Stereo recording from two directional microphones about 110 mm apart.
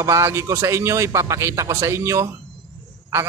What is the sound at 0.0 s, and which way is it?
A man's voice, 25° right (ahead or behind).